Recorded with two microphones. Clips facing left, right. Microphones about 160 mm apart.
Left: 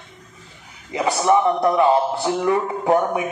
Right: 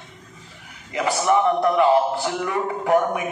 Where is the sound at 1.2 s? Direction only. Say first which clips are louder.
Left 2 dB; 25° left (ahead or behind).